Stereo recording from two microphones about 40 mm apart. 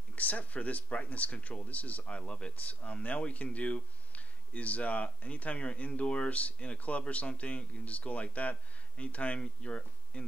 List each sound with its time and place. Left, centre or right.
0.1 s speech: left
2.0 s speech: left
2.7 s speech: left